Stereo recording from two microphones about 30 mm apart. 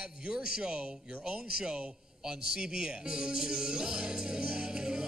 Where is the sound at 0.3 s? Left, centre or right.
Right.